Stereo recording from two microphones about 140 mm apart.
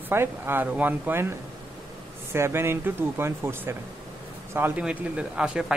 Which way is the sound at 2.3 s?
20° right (ahead or behind).